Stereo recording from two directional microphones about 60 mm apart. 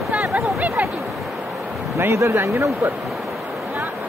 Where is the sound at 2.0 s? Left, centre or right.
Right.